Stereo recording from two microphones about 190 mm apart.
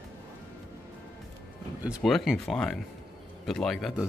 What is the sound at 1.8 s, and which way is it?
Speech, centre (ahead or behind).